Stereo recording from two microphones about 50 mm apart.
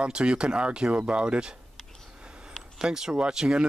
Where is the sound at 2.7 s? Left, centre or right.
Centre.